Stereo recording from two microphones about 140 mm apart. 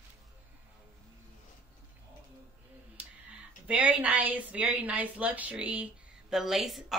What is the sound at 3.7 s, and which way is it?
A woman's voice, 10° right (ahead or behind).